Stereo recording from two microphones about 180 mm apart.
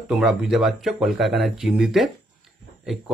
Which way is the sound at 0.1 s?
5° right (ahead or behind).